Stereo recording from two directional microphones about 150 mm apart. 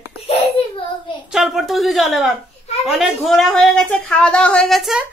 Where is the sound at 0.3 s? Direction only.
35° left (ahead or behind).